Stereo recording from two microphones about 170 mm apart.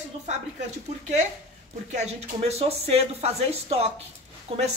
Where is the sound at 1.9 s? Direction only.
40° right (ahead or behind).